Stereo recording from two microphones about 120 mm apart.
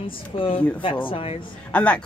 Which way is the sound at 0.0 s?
45° left (ahead or behind).